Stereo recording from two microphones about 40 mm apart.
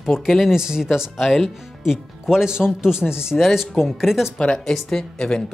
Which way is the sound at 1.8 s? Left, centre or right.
Centre.